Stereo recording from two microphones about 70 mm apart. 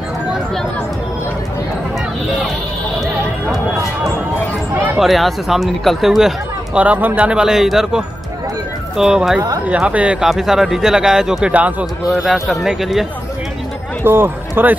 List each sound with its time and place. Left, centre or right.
4.9 s speech: centre
6.8 s speech: right
7.2 s speech: centre
10.2 s speech: centre
14.0 s speech: right